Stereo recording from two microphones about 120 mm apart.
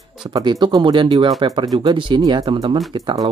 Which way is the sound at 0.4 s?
35° right (ahead or behind).